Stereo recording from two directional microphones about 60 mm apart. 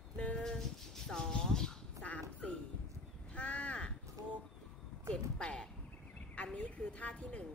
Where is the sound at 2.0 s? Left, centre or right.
Left.